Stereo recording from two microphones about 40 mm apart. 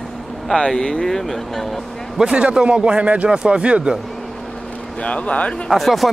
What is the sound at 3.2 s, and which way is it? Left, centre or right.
Speech, right.